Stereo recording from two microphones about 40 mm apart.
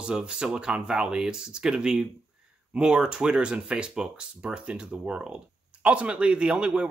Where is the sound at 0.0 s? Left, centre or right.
Right.